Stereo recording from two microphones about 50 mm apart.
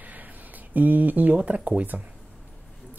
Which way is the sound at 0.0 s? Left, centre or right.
Right.